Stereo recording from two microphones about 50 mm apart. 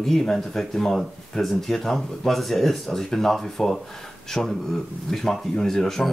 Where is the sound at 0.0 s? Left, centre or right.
Centre.